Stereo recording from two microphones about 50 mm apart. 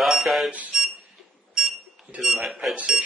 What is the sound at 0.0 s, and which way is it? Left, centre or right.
Alarm, centre.